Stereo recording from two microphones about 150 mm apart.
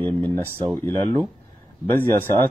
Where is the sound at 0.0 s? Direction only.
10° left (ahead or behind).